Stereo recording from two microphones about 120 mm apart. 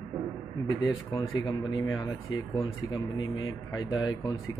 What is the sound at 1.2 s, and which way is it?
Speech, 40° left (ahead or behind).